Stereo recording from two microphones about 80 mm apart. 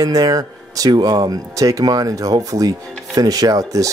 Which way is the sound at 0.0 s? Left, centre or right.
Right.